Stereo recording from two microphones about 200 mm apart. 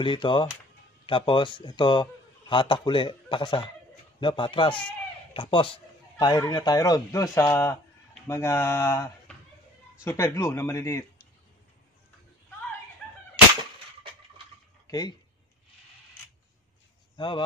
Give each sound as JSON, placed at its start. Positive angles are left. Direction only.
{"t": 0.0, "sound": "a man's voice", "side_deg": 25}
{"t": 14.9, "sound": "speech", "side_deg": 20}